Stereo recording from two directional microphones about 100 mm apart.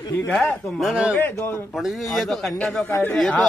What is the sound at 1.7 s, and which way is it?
A man's voice, centre (ahead or behind).